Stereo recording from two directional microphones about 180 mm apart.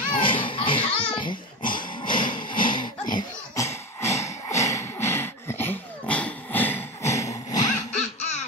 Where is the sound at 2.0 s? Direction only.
25° left (ahead or behind).